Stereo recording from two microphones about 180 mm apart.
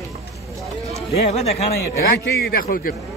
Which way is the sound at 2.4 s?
60° left (ahead or behind).